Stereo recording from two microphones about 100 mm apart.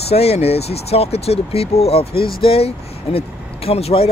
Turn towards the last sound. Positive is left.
turn(degrees=80)